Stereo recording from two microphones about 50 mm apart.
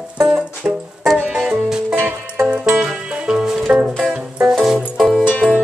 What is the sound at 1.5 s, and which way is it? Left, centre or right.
Music, centre.